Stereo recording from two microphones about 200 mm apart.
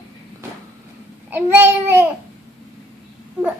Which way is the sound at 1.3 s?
10° right (ahead or behind).